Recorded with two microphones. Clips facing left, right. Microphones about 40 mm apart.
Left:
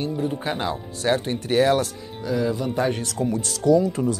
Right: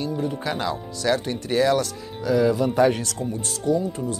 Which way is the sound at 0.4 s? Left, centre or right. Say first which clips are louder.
Even; left.